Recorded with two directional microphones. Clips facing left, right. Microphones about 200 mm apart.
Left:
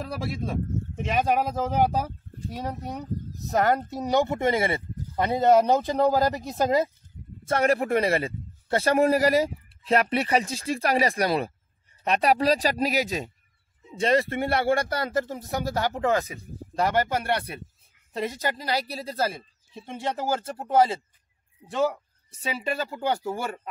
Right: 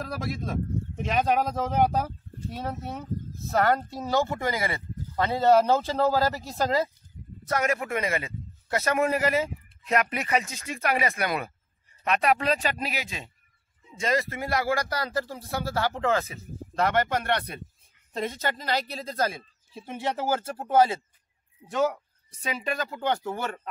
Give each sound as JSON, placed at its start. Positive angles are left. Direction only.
{"t": 0.0, "sound": "speech", "side_deg": 0}
{"t": 7.4, "sound": "a man's voice", "side_deg": 30}
{"t": 22.8, "sound": "speech", "side_deg": 10}